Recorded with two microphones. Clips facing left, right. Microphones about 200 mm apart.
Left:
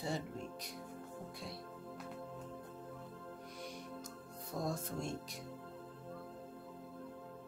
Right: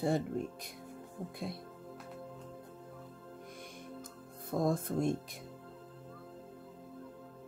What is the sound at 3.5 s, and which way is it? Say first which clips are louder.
Music: left 1 dB; 50° right (ahead or behind).